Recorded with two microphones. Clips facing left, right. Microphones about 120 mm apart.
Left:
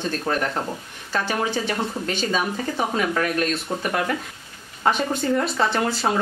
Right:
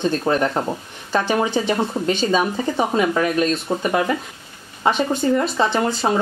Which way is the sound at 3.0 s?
10° right (ahead or behind).